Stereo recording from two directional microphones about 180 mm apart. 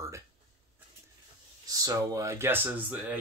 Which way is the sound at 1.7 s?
20° right (ahead or behind).